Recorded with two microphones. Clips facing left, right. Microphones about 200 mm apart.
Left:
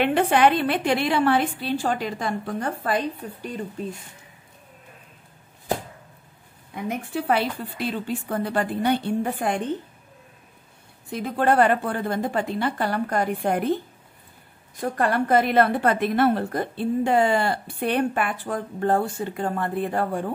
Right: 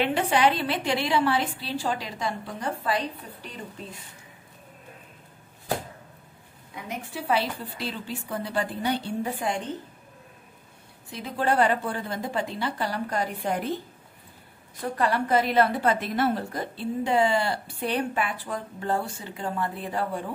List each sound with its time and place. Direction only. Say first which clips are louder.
0.0 s a woman's voice: left 4 dB; 55° left (ahead or behind)
6.7 s a woman's voice: left 7 dB; 55° left (ahead or behind)
11.1 s a woman's voice: left 5 dB; 50° left (ahead or behind)
15.0 s a woman's voice: left 3 dB; 50° left (ahead or behind)